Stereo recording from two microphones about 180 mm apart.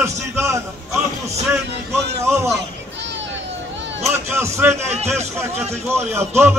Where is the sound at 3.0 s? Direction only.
80° right.